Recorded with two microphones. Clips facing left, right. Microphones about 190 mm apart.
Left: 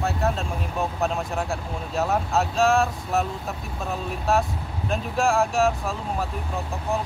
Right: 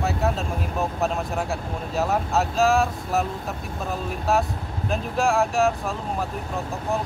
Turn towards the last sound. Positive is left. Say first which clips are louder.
# even
turn(degrees=0)  # may be behind; listen again after turning